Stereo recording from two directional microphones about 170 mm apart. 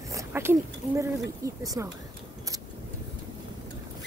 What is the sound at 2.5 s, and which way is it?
Vehicle, 20° right (ahead or behind).